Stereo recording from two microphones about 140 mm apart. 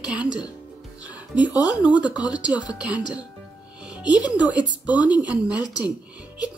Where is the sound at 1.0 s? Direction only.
10° right (ahead or behind).